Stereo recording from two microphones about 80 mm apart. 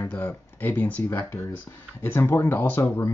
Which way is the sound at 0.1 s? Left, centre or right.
Left.